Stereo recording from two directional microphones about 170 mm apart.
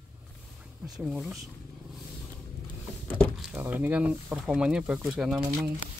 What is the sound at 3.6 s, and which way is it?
Speech, 10° right (ahead or behind).